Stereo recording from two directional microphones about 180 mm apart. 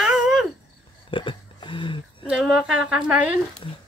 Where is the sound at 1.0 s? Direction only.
30° left (ahead or behind).